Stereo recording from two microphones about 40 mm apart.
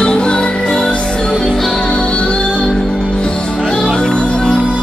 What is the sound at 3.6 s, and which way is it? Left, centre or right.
Music, centre.